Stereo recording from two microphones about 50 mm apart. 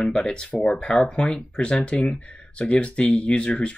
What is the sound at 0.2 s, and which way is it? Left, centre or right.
Speech, centre.